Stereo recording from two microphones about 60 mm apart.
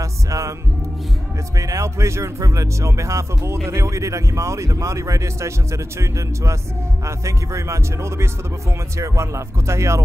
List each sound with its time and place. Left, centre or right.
0.0 s music: right
1.6 s speech: right